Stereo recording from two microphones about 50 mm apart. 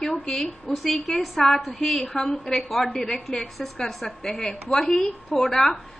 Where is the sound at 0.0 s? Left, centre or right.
Left.